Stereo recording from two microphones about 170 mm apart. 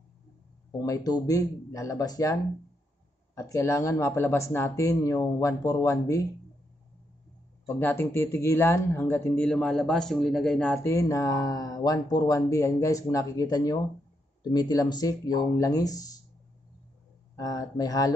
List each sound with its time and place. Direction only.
0.7 s speech: 20° left (ahead or behind)
3.3 s speech: 15° left (ahead or behind)
7.6 s speech: 15° left (ahead or behind)
17.4 s speech: 20° left (ahead or behind)